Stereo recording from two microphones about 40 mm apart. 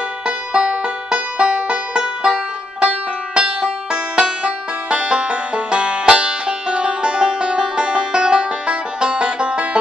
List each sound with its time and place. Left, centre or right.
0.5 s music: right